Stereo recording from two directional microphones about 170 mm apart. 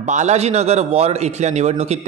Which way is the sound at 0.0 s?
45° right (ahead or behind).